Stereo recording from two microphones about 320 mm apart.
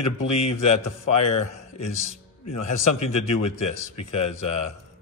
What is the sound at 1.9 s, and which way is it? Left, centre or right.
Speech, left.